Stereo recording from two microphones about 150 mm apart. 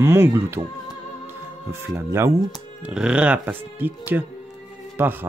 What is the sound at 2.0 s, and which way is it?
Speech, 20° right (ahead or behind).